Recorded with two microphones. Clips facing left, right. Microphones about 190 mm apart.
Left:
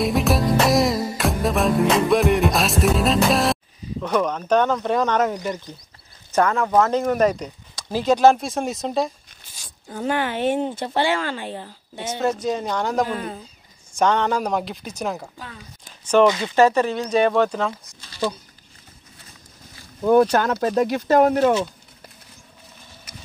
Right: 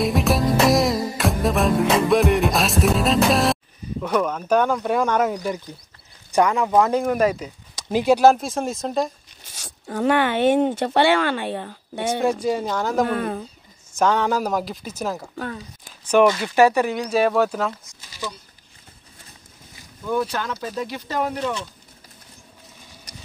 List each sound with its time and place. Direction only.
0.0 s music: centre (ahead or behind)
4.0 s speech: 5° right (ahead or behind)
9.5 s speech: 75° right (ahead or behind)
12.2 s speech: 10° right (ahead or behind)
13.1 s speech: 60° right (ahead or behind)
13.9 s speech: 5° right (ahead or behind)
16.3 s speech: 15° left (ahead or behind)
16.5 s speech: 10° right (ahead or behind)
20.0 s speech: 50° left (ahead or behind)